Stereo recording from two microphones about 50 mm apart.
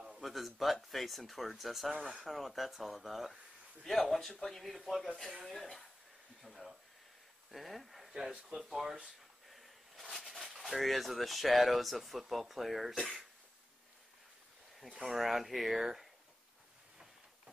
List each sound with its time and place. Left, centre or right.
0.2 s speech: centre
2.0 s speech: right
2.2 s speech: centre
6.4 s a sound: centre
7.5 s speech: centre
14.9 s speech: centre
15.1 s speech: centre